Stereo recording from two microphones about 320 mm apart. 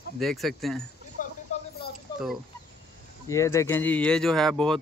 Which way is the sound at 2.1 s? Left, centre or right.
Centre.